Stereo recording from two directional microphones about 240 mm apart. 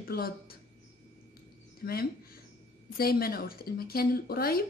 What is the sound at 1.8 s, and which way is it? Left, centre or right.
Speech, left.